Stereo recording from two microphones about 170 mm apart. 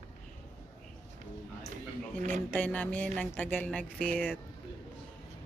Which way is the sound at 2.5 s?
10° left (ahead or behind).